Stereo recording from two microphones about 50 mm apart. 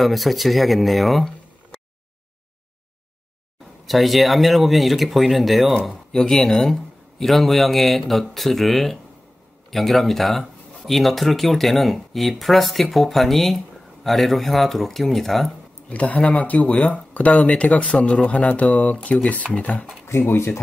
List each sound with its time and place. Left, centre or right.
0.0 s speech: centre
3.8 s speech: centre
15.9 s speech: left
20.1 s speech: left